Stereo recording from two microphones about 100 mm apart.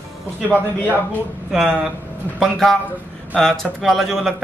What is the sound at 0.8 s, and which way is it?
Speech, 15° left (ahead or behind).